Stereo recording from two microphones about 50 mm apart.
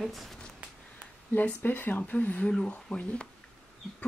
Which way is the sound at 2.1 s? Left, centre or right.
Left.